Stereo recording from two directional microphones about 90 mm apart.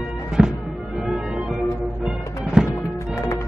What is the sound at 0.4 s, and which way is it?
Music, 10° right (ahead or behind).